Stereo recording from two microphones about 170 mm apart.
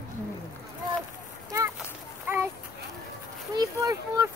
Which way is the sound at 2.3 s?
10° right (ahead or behind).